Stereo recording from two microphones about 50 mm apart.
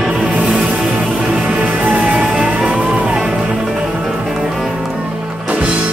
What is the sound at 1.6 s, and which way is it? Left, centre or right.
Music, right.